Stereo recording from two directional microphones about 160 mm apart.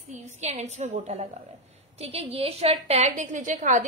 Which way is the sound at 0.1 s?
45° right (ahead or behind).